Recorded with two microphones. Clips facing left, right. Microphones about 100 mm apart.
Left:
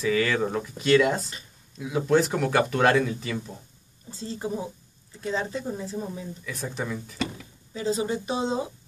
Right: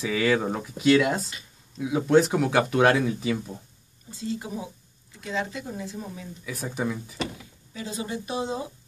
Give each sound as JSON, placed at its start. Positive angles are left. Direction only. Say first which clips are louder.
{"t": 0.1, "sound": "speech", "louder": "right 1 dB", "side_deg": -15}
{"t": 4.1, "sound": "speech", "louder": "left 1 dB", "side_deg": 35}
{"t": 6.4, "sound": "speech", "louder": "even", "side_deg": -5}
{"t": 7.8, "sound": "speech", "louder": "left 6 dB", "side_deg": 30}